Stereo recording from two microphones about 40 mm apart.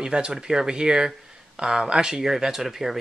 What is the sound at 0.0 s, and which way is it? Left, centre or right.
Speech, right.